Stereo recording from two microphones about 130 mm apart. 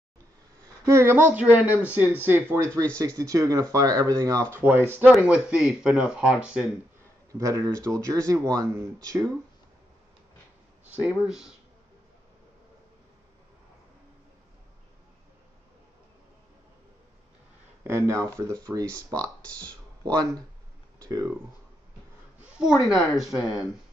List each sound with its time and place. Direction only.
0.8 s speech: 20° right (ahead or behind)
7.3 s speech: 25° right (ahead or behind)
11.0 s speech: 10° right (ahead or behind)
17.8 s speech: 20° right (ahead or behind)
22.4 s a sound: 5° right (ahead or behind)
22.8 s speech: centre (ahead or behind)
23.4 s speech: 25° left (ahead or behind)